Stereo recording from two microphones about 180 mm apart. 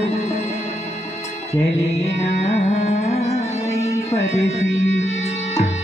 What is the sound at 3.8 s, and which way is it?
Music, 15° left (ahead or behind).